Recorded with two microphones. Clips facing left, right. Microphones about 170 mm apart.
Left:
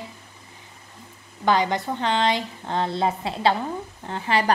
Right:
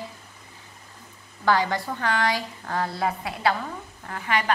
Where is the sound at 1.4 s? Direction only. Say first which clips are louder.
Left 2 dB; 20° left (ahead or behind).